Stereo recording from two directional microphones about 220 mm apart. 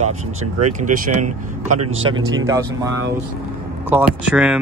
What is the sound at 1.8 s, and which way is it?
Speech, 65° right (ahead or behind).